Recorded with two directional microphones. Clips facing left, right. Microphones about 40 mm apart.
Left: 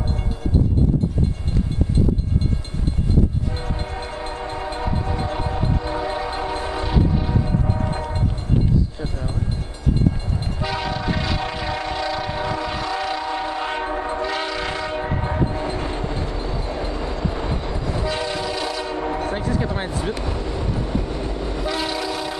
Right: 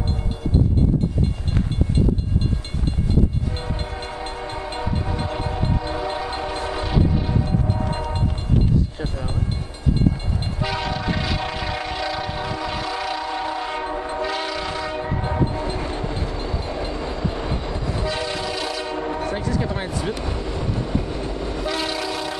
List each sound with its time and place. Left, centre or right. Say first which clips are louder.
5.3 s train: left 1 dB; centre
10.6 s train: even; centre
13.7 s train: left 2 dB; left
14.2 s train: left 1 dB; centre
19.6 s a sound: left 1 dB; centre
20.1 s train: left 1 dB; centre